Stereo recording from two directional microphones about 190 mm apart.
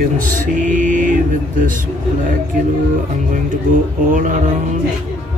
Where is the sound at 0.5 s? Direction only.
45° right (ahead or behind).